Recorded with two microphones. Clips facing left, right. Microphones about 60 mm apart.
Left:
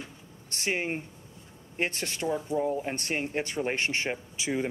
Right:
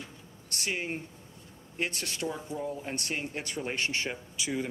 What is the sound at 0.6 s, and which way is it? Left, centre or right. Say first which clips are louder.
Speech: left 4 dB; left.